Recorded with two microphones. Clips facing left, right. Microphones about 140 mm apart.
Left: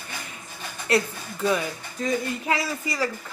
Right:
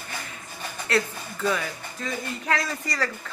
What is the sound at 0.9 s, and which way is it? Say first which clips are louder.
Speech: left 2 dB; 15° left (ahead or behind).